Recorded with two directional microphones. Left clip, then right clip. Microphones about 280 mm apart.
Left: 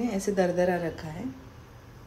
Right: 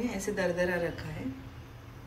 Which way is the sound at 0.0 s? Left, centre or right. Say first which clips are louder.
Left 5 dB; left.